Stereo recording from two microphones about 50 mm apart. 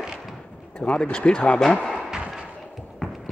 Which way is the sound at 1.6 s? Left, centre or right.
Centre.